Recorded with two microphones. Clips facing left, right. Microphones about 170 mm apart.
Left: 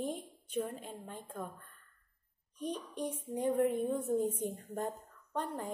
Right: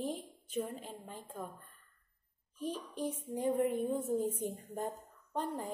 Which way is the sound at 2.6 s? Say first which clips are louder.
Even; centre (ahead or behind).